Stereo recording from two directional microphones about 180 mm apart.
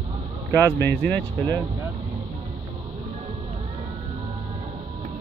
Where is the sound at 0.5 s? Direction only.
10° left (ahead or behind).